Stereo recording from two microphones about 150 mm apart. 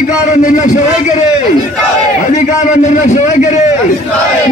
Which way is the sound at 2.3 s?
50° left (ahead or behind).